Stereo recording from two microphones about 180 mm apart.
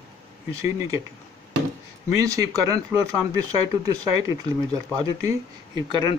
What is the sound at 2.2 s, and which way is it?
Speech, 20° right (ahead or behind).